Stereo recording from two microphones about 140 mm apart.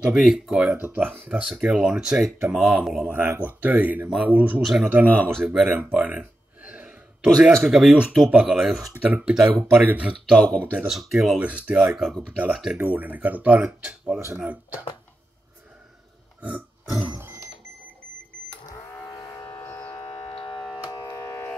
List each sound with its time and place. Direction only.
0.1 s speech: 5° right (ahead or behind)
3.1 s speech: 15° right (ahead or behind)
4.9 s speech: 15° right (ahead or behind)
10.4 s speech: 10° left (ahead or behind)
10.7 s speech: 5° right (ahead or behind)
16.3 s a sound: 10° right (ahead or behind)
19.1 s a sound: 30° left (ahead or behind)
19.8 s civil defense siren: 45° left (ahead or behind)
20.7 s music: 30° left (ahead or behind)